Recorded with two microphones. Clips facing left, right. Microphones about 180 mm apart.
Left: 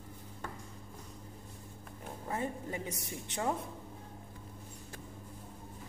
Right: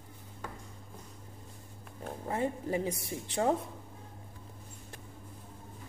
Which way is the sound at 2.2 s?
30° right (ahead or behind).